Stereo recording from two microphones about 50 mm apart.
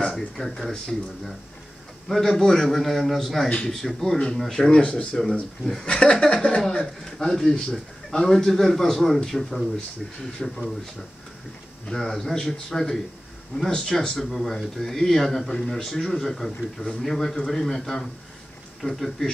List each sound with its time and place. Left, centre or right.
0.0 s speech: centre
11.9 s speech: centre